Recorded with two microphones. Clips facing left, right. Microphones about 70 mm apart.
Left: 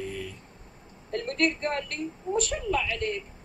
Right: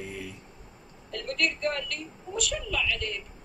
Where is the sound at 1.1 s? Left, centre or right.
Left.